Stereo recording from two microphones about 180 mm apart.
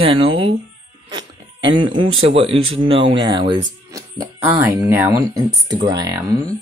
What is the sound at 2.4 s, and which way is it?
Speech, 30° right (ahead or behind).